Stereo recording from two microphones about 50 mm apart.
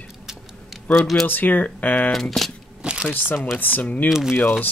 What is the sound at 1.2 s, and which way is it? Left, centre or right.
Speech, left.